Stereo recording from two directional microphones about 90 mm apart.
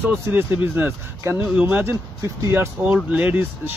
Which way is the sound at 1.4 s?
15° right (ahead or behind).